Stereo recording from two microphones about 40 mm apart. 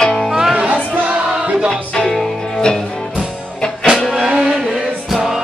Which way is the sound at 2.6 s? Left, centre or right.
Left.